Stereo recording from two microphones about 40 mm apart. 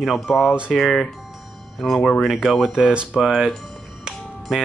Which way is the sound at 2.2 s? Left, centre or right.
Centre.